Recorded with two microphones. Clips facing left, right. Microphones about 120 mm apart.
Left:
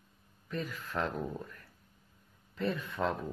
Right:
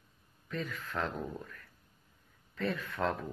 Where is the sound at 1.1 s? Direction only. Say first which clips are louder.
Left 2 dB; 10° left (ahead or behind).